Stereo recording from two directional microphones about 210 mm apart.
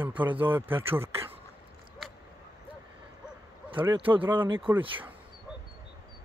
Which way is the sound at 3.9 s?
25° right (ahead or behind).